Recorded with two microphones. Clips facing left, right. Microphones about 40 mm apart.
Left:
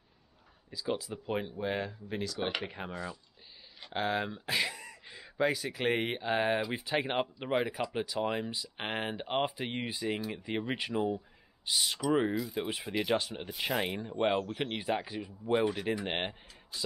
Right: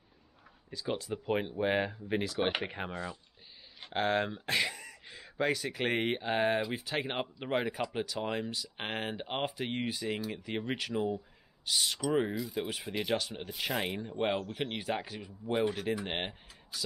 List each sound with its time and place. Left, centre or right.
0.7 s speech: centre
1.1 s speech: centre
2.9 s speech: right
3.9 s speech: centre
4.8 s speech: centre
12.0 s speech: centre